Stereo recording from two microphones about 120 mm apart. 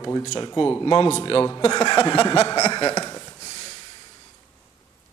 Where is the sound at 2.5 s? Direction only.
30° left (ahead or behind).